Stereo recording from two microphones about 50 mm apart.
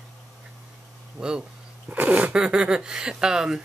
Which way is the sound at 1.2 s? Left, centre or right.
Centre.